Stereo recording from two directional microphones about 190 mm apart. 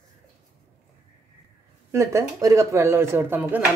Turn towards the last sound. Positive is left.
turn(degrees=-10)  # may be behind; listen again after turning